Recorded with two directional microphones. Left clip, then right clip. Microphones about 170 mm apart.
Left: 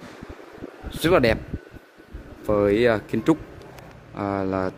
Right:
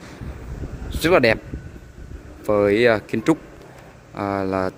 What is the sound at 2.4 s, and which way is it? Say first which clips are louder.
Speech: right 3 dB; 10° right (ahead or behind).